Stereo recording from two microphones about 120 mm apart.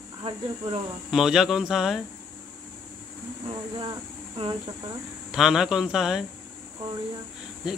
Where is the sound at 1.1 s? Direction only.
5° right (ahead or behind).